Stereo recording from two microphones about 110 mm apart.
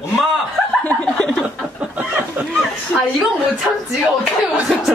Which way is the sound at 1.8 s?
15° right (ahead or behind).